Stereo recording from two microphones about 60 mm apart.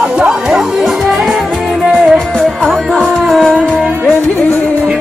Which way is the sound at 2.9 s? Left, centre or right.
Centre.